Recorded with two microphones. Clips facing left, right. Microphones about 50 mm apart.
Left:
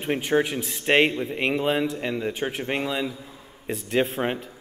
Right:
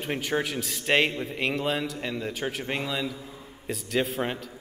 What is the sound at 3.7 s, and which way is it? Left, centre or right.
Speech, left.